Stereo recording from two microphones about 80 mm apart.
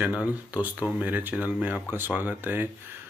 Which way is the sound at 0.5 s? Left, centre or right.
Centre.